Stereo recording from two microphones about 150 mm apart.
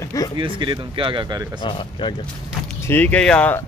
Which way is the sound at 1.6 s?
30° left (ahead or behind).